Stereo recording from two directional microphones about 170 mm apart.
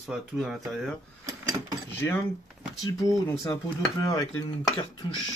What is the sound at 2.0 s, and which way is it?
Speech, 15° left (ahead or behind).